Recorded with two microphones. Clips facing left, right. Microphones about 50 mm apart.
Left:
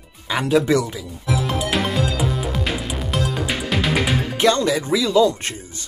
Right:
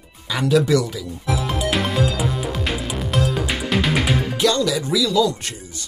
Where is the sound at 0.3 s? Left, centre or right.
Left.